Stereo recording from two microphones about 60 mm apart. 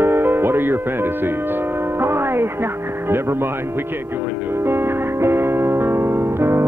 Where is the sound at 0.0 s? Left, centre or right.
Right.